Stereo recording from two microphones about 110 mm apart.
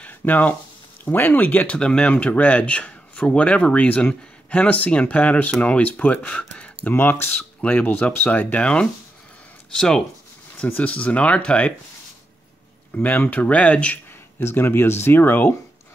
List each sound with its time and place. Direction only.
0.0 s speech: 15° left (ahead or behind)
12.9 s speech: 15° left (ahead or behind)